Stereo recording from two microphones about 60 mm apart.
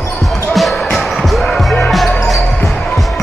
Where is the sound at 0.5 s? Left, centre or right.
Centre.